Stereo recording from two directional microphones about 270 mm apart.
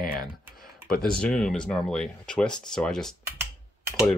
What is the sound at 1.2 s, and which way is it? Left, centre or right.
Speech, centre.